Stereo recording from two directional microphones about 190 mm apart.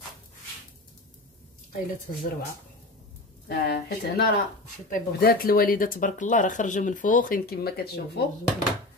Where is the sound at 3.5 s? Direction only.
55° left (ahead or behind).